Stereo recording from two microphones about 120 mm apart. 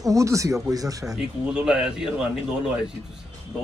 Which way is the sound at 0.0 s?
25° right (ahead or behind).